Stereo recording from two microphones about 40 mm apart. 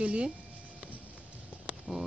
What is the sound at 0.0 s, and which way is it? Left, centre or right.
Speech, right.